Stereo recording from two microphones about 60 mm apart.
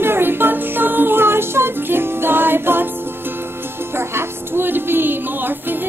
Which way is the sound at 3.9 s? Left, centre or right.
Right.